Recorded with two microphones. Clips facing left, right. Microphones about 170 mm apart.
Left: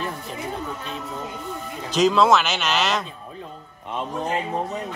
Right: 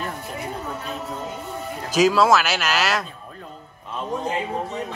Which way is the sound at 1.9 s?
5° right (ahead or behind).